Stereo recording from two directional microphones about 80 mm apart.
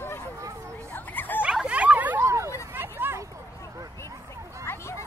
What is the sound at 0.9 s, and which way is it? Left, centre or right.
Dog, left.